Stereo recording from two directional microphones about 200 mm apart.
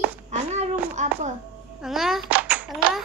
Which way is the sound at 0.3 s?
35° right (ahead or behind).